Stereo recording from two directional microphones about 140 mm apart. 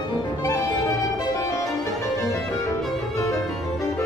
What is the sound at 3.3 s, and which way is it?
Music, centre (ahead or behind).